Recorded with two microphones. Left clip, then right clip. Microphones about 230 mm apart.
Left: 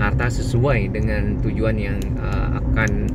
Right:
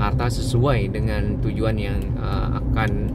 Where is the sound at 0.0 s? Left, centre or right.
Right.